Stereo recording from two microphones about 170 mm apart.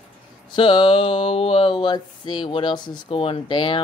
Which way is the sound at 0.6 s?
30° left (ahead or behind).